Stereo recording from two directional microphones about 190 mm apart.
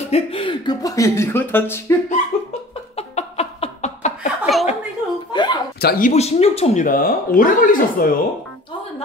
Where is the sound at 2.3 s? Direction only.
35° left (ahead or behind).